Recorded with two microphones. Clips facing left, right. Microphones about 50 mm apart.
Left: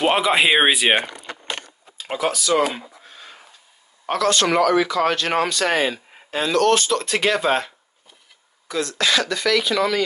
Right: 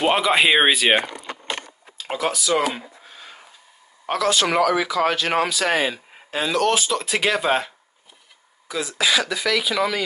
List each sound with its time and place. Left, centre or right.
0.0 s speech: centre
2.0 s a sound: centre
4.0 s speech: centre